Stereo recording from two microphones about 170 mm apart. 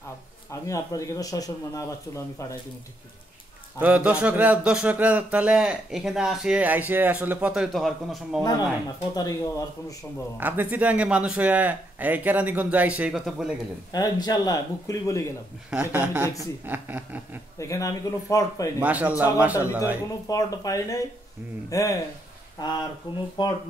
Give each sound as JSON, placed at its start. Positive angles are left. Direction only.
{"t": 0.5, "sound": "speech", "side_deg": 20}
{"t": 3.8, "sound": "speech", "side_deg": -10}
{"t": 9.1, "sound": "speech", "side_deg": 20}
{"t": 10.3, "sound": "speech", "side_deg": -10}
{"t": 13.9, "sound": "speech", "side_deg": 25}
{"t": 15.7, "sound": "speech", "side_deg": -10}
{"t": 17.6, "sound": "speech", "side_deg": 20}
{"t": 18.8, "sound": "speech", "side_deg": -10}
{"t": 20.2, "sound": "speech", "side_deg": 20}